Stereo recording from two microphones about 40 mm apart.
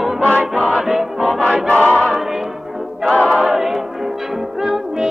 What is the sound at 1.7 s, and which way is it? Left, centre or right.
Choir, left.